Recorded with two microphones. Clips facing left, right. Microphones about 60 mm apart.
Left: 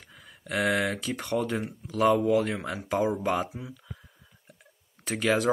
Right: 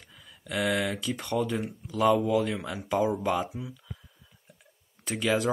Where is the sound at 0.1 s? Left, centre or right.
Left.